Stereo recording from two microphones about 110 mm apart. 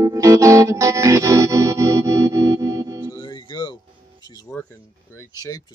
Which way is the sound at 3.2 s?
45° left (ahead or behind).